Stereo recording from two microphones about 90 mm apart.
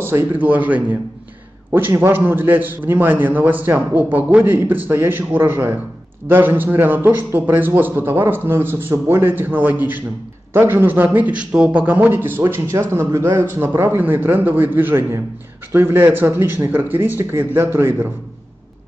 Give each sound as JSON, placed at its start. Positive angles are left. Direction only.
{"t": 0.0, "sound": "a man's voice", "side_deg": -25}